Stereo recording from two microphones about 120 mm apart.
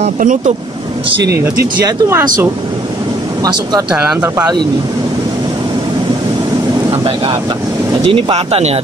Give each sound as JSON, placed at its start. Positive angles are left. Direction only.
{"t": 0.0, "sound": "speech", "side_deg": -90}
{"t": 1.4, "sound": "speech", "side_deg": -20}
{"t": 3.4, "sound": "speech", "side_deg": -35}
{"t": 3.9, "sound": "speech", "side_deg": -15}
{"t": 6.9, "sound": "speech", "side_deg": -50}